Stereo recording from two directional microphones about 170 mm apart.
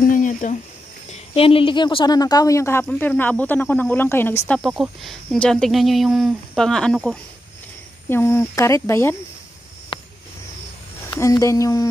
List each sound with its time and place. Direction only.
0.1 s a sound: 50° left (ahead or behind)
1.1 s speech: 35° left (ahead or behind); by 4.6 s 15° left (ahead or behind)
4.6 s speech: 5° right (ahead or behind)
8.1 s speech: 15° left (ahead or behind)
9.9 s a sound: 30° left (ahead or behind)
11.1 s speech: 20° left (ahead or behind)